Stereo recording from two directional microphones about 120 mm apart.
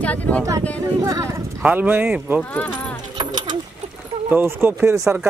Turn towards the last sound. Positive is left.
turn(degrees=-20)  # may be behind; listen again after turning